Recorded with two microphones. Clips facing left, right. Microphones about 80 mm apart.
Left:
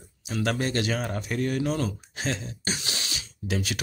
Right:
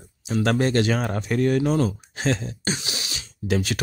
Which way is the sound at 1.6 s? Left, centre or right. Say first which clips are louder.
Right 6 dB; right.